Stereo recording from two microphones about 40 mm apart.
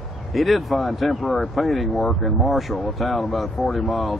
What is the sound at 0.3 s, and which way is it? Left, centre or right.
Speech, centre.